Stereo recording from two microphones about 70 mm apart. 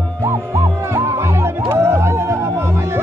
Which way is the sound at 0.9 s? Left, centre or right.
Right.